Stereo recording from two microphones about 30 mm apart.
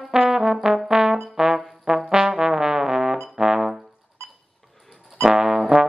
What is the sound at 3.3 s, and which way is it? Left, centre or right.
Brass instrument, right.